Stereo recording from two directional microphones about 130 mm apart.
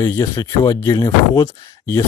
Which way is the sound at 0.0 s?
25° left (ahead or behind).